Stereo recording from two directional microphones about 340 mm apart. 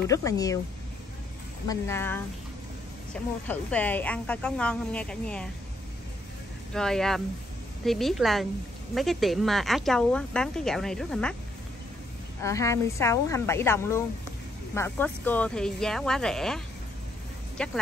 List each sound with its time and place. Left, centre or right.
0.1 s speech: centre
1.7 s a woman's voice: centre
6.7 s a woman's voice: centre
12.4 s a woman's voice: centre